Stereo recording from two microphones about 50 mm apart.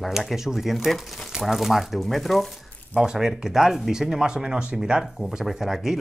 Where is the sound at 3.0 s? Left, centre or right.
Centre.